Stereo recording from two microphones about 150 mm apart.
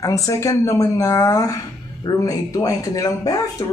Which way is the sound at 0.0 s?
20° left (ahead or behind).